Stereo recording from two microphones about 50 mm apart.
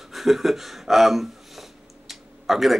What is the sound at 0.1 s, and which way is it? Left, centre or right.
Speech, centre.